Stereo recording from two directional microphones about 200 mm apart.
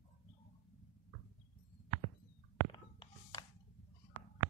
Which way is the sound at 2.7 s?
20° left (ahead or behind).